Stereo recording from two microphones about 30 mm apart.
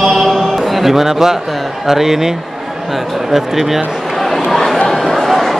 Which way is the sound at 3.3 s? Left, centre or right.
Centre.